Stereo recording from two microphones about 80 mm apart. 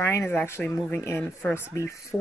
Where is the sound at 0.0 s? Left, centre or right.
Left.